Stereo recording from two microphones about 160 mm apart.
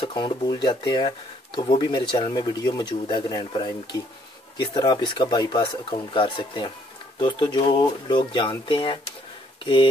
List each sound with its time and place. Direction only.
0.0 s speech: 30° left (ahead or behind)